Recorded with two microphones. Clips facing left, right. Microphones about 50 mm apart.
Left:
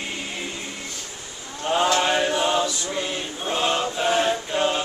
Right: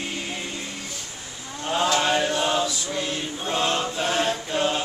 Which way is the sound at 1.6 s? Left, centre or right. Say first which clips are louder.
Left 2 dB; centre.